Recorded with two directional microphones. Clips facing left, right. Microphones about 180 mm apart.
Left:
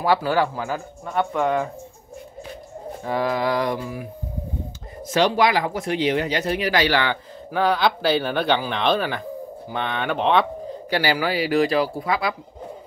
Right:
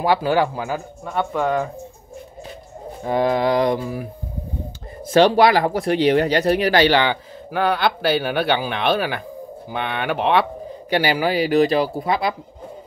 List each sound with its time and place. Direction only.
0.0 s speech: 15° right (ahead or behind)
1.0 s speech: centre (ahead or behind)
3.0 s speech: 20° right (ahead or behind)
5.0 s speech: 30° right (ahead or behind)
7.5 s speech: 5° right (ahead or behind)
10.9 s speech: 20° right (ahead or behind)